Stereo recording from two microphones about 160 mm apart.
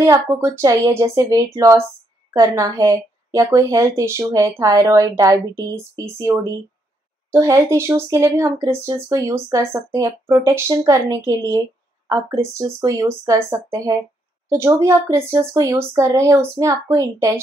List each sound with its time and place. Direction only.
0.0 s a woman's voice: 20° right (ahead or behind)
7.3 s a woman's voice: 20° right (ahead or behind)